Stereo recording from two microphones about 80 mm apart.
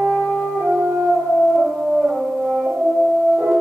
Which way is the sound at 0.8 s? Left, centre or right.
Right.